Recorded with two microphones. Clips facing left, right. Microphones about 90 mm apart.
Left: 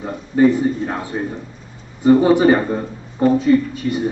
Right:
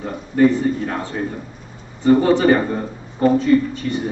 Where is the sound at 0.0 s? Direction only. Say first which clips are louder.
Left 1 dB; 15° left (ahead or behind).